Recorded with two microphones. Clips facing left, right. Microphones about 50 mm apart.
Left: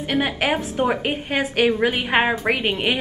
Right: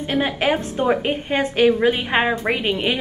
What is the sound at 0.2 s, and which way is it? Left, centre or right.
A woman's voice, centre.